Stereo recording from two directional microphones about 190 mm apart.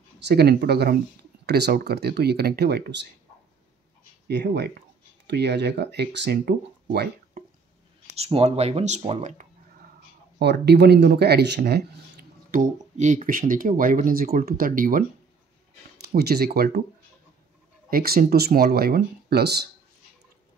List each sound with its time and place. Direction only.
0.2 s speech: 60° right (ahead or behind)
4.3 s speech: 65° right (ahead or behind)
8.2 s speech: 30° right (ahead or behind)
10.4 s speech: 60° right (ahead or behind)
17.8 s speech: 50° right (ahead or behind)